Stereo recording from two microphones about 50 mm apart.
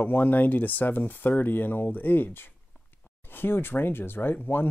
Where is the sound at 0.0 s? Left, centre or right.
Left.